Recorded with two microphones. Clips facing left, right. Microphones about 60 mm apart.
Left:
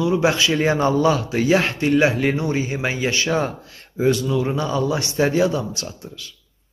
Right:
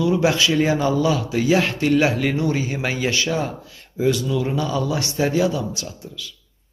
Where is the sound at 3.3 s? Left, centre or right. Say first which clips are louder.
Left 2 dB; left.